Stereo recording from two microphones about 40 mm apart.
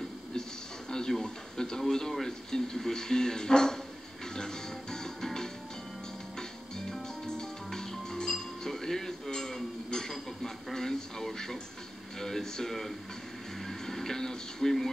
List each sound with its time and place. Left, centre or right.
0.3 s television: centre
1.8 s speech: centre
4.4 s music: centre
6.9 s music: centre
12.2 s a sound: centre
13.7 s television: centre